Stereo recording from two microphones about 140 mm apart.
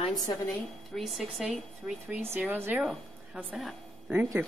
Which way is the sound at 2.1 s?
15° right (ahead or behind).